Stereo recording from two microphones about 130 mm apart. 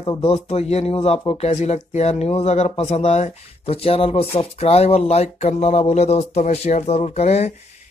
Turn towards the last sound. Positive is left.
turn(degrees=55)  # may be behind; listen again after turning